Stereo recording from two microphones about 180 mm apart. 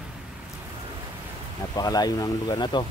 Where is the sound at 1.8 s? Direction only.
20° left (ahead or behind).